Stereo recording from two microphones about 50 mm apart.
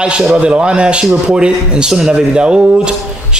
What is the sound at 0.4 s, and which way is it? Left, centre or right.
A man's voice, right.